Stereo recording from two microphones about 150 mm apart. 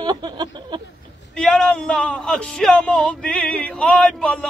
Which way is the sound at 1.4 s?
5° left (ahead or behind).